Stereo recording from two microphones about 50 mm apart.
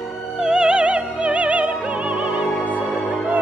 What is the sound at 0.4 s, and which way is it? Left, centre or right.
Music, centre.